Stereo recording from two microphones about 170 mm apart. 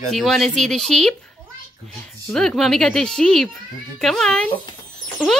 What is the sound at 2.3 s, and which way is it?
Speech, centre (ahead or behind).